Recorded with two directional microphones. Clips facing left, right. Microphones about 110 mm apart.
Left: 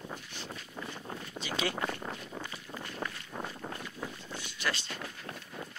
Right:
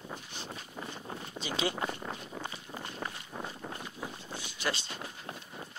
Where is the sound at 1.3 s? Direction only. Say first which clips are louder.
Right 1 dB; 25° right (ahead or behind).